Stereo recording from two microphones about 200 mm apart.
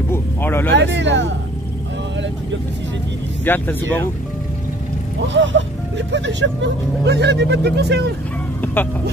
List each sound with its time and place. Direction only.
0.1 s vehicle: 10° left (ahead or behind)
0.7 s speech: 60° right (ahead or behind)
3.4 s speech: 10° left (ahead or behind)
5.3 s speech: 65° right (ahead or behind)